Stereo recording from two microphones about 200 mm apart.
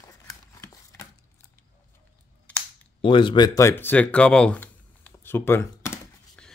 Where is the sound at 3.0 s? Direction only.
25° left (ahead or behind).